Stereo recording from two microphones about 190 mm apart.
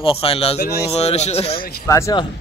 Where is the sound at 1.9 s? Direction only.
15° left (ahead or behind).